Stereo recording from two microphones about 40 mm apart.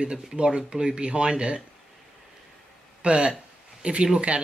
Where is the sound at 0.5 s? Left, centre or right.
Right.